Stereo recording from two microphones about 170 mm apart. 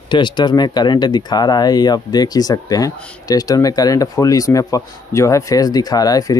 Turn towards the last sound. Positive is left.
turn(degrees=20)  # may be behind; listen again after turning